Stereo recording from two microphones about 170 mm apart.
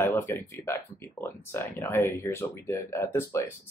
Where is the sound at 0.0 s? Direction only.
10° left (ahead or behind).